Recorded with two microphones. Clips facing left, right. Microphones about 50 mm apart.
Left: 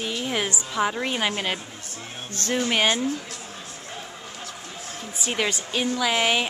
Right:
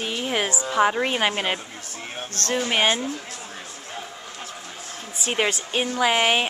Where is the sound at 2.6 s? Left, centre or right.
Centre.